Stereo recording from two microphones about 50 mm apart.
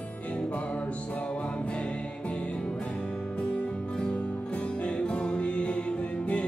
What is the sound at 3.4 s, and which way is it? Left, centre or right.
Music, left.